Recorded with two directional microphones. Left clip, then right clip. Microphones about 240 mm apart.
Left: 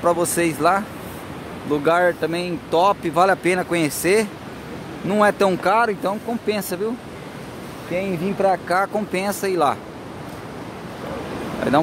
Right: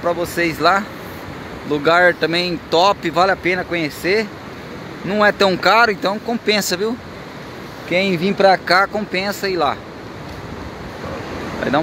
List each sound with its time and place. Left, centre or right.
0.0 s speech: centre
7.9 s speech: centre
8.6 s speech: centre